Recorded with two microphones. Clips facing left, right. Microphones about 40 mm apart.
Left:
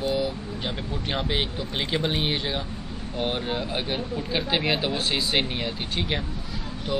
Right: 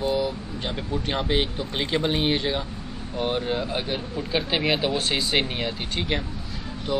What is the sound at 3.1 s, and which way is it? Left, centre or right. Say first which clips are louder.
Speech: right 2 dB; centre.